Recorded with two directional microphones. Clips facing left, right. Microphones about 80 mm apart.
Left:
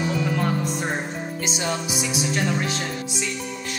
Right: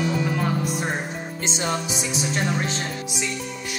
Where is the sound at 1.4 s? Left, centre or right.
Right.